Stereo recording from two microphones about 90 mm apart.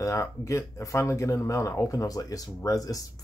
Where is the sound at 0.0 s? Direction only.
35° left (ahead or behind).